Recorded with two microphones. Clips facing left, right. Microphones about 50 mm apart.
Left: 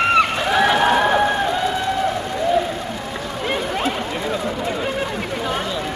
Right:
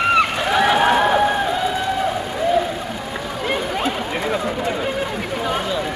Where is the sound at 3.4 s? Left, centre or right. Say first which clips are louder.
Even; centre.